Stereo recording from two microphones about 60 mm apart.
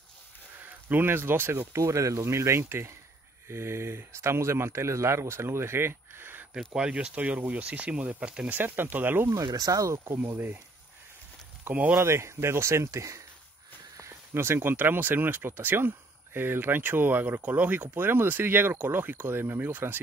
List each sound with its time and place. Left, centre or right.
0.7 s speech: right
1.8 s speech: right
6.7 s speech: centre
8.5 s speech: right
9.3 s speech: right
9.9 s speech: right
11.7 s speech: right
12.0 s speech: right
13.9 s speech: right